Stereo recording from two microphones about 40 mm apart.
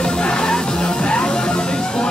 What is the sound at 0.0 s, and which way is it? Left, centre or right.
Music, left.